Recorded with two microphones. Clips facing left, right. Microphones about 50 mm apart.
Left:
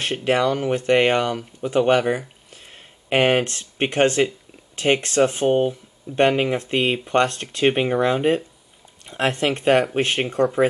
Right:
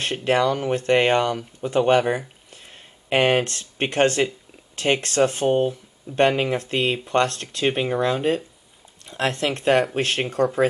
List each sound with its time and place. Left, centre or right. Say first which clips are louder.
0.0 s speech: even; centre
3.4 s speech: left 2 dB; centre